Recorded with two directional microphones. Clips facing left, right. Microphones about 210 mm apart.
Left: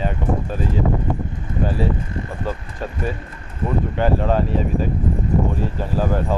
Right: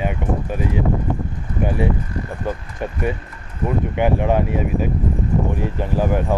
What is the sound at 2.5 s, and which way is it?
Speech, 20° right (ahead or behind).